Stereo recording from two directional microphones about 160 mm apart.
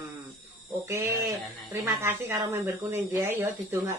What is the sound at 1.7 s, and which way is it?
A woman's voice, 15° right (ahead or behind).